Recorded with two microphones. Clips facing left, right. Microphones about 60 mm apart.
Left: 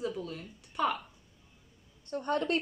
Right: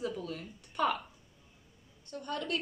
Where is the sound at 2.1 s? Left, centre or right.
Left.